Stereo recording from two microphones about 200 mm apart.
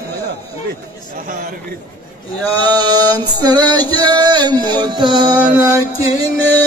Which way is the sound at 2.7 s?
20° right (ahead or behind).